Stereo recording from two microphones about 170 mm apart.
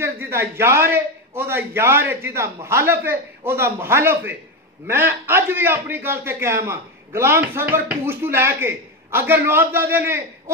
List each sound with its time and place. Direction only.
0.0 s a man's voice: 15° right (ahead or behind)